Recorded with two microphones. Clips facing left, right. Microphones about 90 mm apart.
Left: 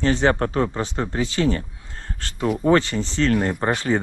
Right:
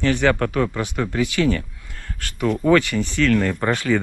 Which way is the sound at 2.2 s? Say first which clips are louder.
Right 1 dB; 25° left (ahead or behind).